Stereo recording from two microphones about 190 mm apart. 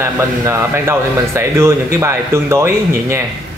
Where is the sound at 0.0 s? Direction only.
15° right (ahead or behind).